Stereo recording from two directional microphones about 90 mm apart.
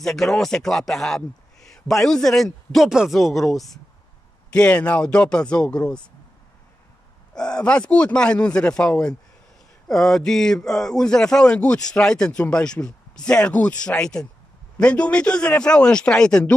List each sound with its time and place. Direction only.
0.0 s a man's voice: 5° left (ahead or behind)
4.5 s speech: 15° left (ahead or behind)
7.3 s speech: 10° left (ahead or behind)